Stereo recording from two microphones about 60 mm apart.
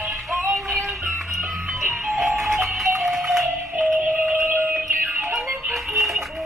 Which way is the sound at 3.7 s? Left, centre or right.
Right.